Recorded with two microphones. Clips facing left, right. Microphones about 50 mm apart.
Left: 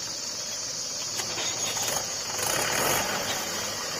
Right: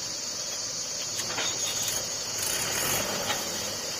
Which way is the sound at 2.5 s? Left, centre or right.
Left.